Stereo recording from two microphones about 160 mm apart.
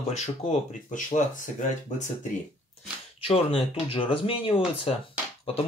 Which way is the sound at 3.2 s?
35° left (ahead or behind).